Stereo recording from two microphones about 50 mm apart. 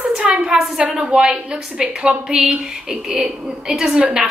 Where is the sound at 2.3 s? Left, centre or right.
Right.